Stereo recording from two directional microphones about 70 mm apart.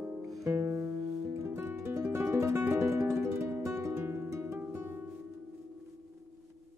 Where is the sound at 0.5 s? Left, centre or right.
Right.